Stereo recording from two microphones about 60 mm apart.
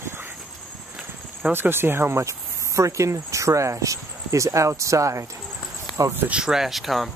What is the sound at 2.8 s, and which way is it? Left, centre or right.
Speech, right.